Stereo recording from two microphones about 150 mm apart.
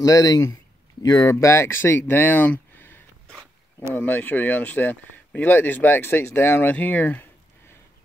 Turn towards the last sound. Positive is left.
turn(degrees=10)  # may be behind; listen again after turning